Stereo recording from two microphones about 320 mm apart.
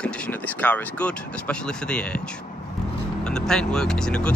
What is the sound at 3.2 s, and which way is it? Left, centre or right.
Speech, centre.